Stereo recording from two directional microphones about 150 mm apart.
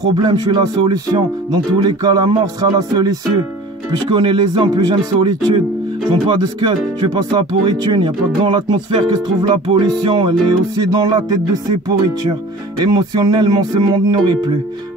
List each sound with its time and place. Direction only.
0.2 s speech: 30° right (ahead or behind)
12.8 s speech: 30° right (ahead or behind)